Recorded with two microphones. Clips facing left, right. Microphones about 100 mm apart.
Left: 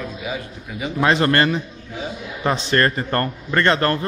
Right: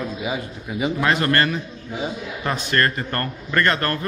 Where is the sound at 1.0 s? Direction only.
25° left (ahead or behind).